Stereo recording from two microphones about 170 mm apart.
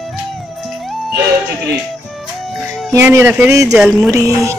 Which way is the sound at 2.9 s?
15° right (ahead or behind).